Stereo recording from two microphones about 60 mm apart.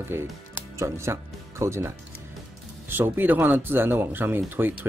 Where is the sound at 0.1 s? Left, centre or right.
Right.